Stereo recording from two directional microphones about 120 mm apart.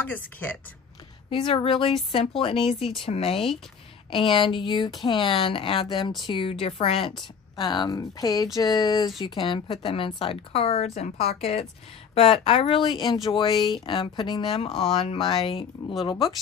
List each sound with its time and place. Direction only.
0.0 s speech: 15° left (ahead or behind)
1.3 s a woman's voice: 50° left (ahead or behind); by 9.1 s 30° left (ahead or behind)
9.2 s a woman's voice: 45° left (ahead or behind)